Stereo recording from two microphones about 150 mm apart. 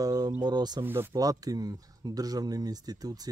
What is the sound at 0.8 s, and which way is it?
Speech, 15° right (ahead or behind).